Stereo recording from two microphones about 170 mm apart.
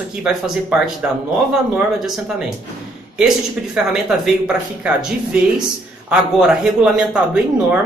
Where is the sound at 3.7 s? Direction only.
5° right (ahead or behind).